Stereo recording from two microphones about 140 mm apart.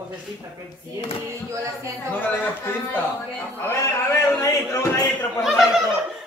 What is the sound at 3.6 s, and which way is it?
A man's voice, 20° left (ahead or behind).